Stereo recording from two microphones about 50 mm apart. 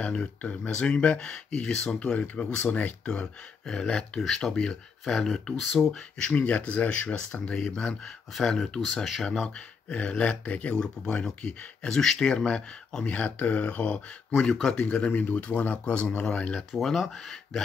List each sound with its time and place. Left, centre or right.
0.0 s speech: left
4.2 s speech: centre
6.3 s speech: left; by 9.9 s centre
9.9 s speech: left
14.8 s speech: left
16.7 s speech: centre